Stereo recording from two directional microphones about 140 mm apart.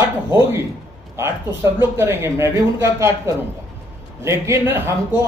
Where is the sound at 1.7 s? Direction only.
15° right (ahead or behind).